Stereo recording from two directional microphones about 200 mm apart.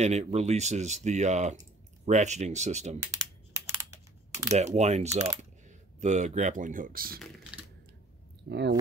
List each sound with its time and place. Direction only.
0.0 s speech: 35° right (ahead or behind)
4.5 s speech: 35° right (ahead or behind)
8.5 s speech: 60° right (ahead or behind)